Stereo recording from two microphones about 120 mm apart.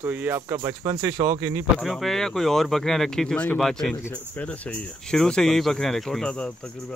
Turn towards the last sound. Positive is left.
turn(degrees=5)  # may be behind; listen again after turning